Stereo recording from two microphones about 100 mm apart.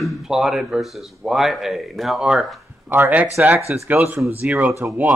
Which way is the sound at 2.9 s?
15° right (ahead or behind).